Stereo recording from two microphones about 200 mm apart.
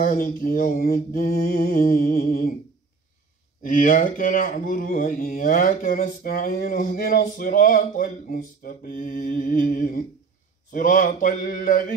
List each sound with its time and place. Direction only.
0.0 s speech: 45° left (ahead or behind)
3.6 s speech: 40° left (ahead or behind)